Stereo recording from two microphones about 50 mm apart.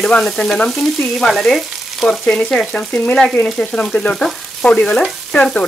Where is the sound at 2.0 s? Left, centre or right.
Centre.